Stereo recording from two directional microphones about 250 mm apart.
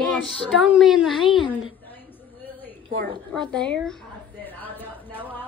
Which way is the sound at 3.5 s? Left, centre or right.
Centre.